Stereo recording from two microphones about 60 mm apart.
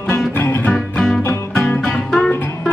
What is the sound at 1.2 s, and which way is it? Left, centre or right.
Music, left.